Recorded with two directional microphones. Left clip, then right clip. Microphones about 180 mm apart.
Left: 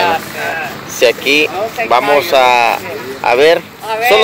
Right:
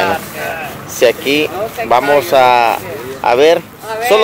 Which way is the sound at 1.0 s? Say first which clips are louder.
Left 1 dB; 25° right (ahead or behind).